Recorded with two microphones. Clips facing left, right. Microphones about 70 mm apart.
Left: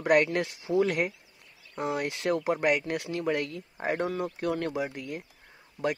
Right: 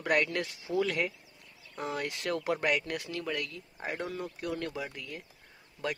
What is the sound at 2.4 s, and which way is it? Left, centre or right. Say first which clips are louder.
Speech: left 1 dB; centre.